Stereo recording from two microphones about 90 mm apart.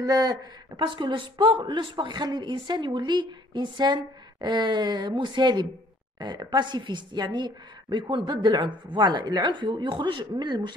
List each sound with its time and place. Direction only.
0.0 s speech: 45° right (ahead or behind)
0.8 s a woman's voice: 65° right (ahead or behind)